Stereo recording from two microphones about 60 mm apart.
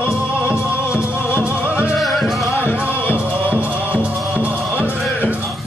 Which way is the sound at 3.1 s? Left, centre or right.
Right.